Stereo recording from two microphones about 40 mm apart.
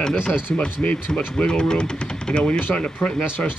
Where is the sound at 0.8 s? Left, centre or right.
Left.